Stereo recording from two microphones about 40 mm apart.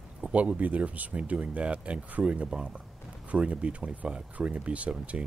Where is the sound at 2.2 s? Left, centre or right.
Right.